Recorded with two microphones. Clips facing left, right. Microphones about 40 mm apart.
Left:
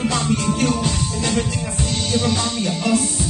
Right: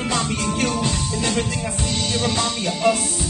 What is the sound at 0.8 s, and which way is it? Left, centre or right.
Music, centre.